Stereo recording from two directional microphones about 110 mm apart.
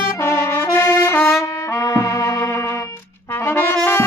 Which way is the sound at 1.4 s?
30° left (ahead or behind).